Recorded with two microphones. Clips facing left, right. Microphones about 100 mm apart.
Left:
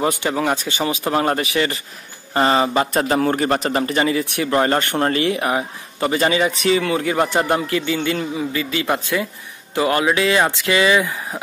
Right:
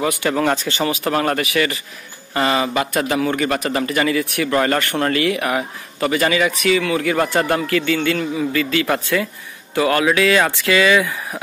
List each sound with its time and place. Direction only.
0.2 s a man's voice: 15° left (ahead or behind)